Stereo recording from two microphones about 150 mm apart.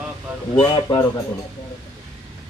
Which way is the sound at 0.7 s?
25° left (ahead or behind).